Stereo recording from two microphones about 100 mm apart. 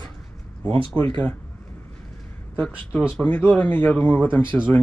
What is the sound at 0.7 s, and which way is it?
Speech, 60° right (ahead or behind).